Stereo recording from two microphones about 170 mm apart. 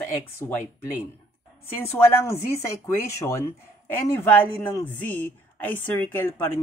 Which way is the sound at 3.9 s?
10° left (ahead or behind).